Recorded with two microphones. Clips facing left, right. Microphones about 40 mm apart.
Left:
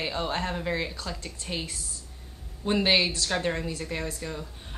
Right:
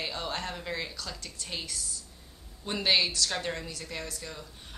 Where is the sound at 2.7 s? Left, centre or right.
Centre.